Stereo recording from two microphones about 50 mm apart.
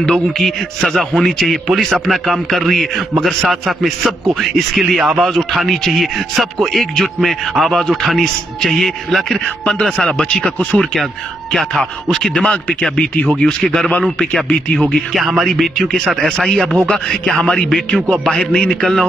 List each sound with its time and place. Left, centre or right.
0.0 s speech: centre; by 10.8 s left
11.7 s speech: centre
12.9 s speech: left
15.1 s speech: centre
16.3 s speech: centre
17.6 s speech: centre